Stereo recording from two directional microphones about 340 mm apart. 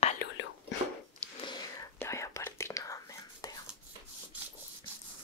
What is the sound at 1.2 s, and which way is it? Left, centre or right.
Whispering, centre.